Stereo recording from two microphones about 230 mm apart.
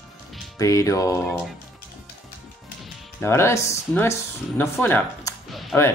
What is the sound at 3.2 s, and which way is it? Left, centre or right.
Speech, centre.